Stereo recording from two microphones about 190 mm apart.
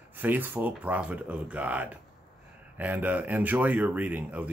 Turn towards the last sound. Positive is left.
turn(degrees=-10)  # may be behind; listen again after turning